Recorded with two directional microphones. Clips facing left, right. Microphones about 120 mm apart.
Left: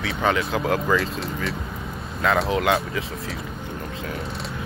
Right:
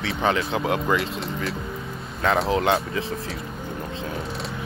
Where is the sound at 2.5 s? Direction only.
30° right (ahead or behind).